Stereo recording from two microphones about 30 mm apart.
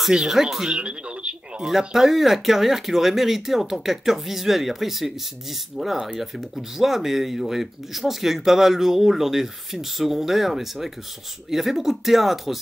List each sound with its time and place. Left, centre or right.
0.3 s speech: centre
0.7 s speech: right
1.6 s speech: centre